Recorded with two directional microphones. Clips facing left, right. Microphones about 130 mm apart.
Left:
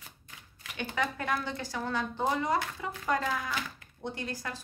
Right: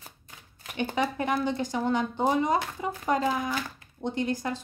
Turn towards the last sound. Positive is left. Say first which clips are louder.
# right 8 dB
turn(degrees=-20)  # may be behind; listen again after turning